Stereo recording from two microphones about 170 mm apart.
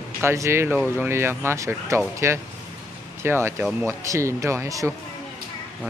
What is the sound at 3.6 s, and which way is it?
Speech, 5° right (ahead or behind).